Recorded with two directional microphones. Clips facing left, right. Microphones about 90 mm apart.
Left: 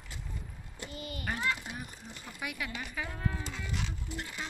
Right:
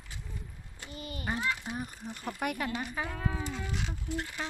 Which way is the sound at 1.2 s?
20° right (ahead or behind).